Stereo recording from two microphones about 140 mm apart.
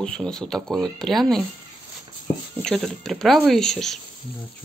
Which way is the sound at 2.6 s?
5° left (ahead or behind).